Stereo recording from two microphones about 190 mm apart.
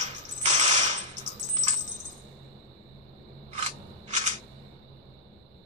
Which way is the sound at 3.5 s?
35° right (ahead or behind).